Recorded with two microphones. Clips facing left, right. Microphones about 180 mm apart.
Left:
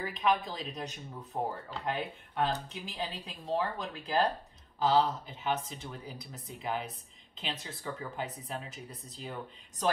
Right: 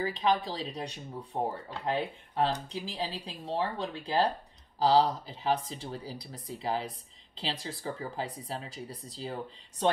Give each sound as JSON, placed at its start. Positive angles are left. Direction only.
{"t": 0.0, "sound": "speech", "side_deg": -30}